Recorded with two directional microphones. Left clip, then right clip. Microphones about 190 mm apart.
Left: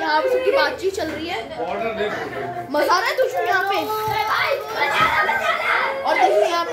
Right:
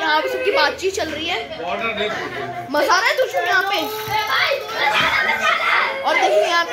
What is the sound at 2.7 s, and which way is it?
Speech, 30° right (ahead or behind).